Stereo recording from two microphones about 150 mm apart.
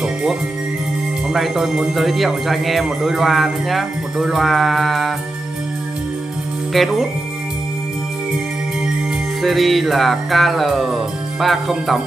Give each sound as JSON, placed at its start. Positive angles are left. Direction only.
{"t": 0.0, "sound": "music", "side_deg": -5}
{"t": 1.3, "sound": "a man's voice", "side_deg": -5}
{"t": 6.7, "sound": "a man's voice", "side_deg": 0}
{"t": 9.4, "sound": "a man's voice", "side_deg": 0}